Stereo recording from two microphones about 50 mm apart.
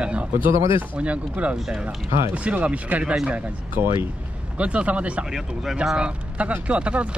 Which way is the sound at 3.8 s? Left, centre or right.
Right.